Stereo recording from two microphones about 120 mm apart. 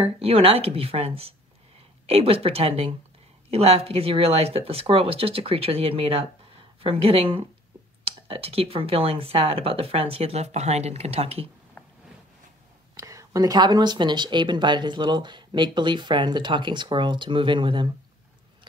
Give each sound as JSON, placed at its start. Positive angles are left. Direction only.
{"t": 0.0, "sound": "speech", "side_deg": -55}
{"t": 12.9, "sound": "speech", "side_deg": -25}